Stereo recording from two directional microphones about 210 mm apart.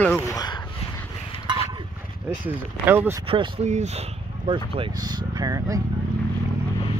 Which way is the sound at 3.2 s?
25° right (ahead or behind).